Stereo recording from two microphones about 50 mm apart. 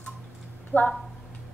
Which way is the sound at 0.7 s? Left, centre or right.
Left.